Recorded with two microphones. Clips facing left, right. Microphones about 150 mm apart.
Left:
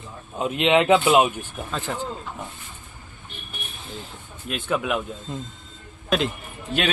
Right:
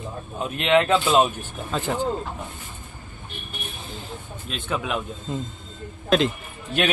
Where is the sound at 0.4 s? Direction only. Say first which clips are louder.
Left 1 dB; 20° left (ahead or behind).